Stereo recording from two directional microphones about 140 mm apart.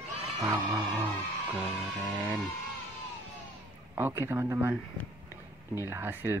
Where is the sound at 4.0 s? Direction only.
15° right (ahead or behind).